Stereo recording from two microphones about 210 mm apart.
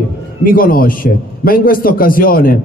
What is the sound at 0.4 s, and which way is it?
A man's voice, 45° left (ahead or behind).